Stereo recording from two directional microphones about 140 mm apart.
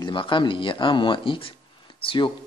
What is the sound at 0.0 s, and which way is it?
Speech, 35° left (ahead or behind).